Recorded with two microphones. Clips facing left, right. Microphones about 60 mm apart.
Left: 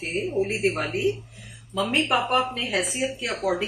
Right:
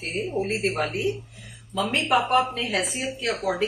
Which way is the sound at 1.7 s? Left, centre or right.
Centre.